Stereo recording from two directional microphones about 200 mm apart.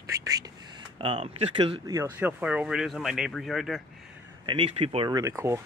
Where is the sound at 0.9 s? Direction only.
25° right (ahead or behind).